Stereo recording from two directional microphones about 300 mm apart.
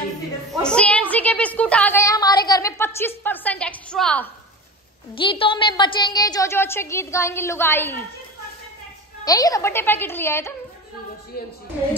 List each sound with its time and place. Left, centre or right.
0.5 s a sound: centre
5.1 s a woman's voice: centre
9.2 s a woman's voice: centre
11.3 s speech: left